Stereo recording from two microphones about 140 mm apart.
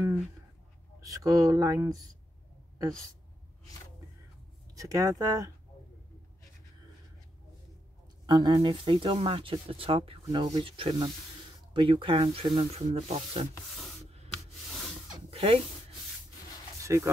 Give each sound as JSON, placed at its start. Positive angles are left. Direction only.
{"t": 1.0, "sound": "speech", "side_deg": -25}
{"t": 4.7, "sound": "speech", "side_deg": -25}
{"t": 8.3, "sound": "speech", "side_deg": -30}
{"t": 15.2, "sound": "a sound", "side_deg": -40}
{"t": 16.8, "sound": "speech", "side_deg": -20}